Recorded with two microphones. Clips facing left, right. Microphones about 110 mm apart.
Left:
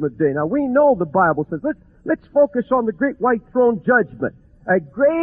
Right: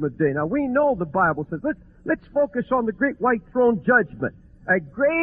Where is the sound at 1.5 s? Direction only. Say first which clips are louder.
Left 3 dB; 15° left (ahead or behind).